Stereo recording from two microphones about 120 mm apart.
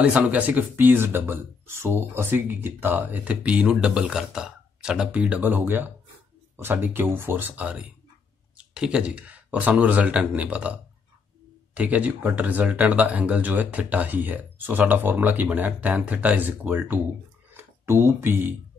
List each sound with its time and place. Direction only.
0.0 s speech: 10° right (ahead or behind)
11.7 s speech: 10° right (ahead or behind)